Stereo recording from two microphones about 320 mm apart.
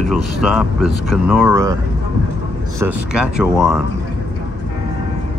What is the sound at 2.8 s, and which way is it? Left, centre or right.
Speech, centre.